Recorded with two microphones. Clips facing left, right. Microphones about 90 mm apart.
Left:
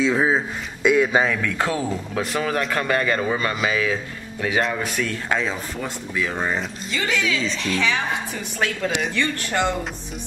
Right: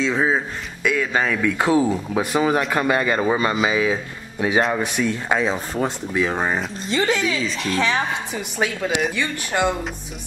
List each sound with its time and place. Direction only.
0.0 s speech: 5° left (ahead or behind)
0.8 s speech: 20° left (ahead or behind)
1.2 s speech: 5° right (ahead or behind)
6.9 s speech: 35° right (ahead or behind)
7.4 s a woman's voice: 5° right (ahead or behind)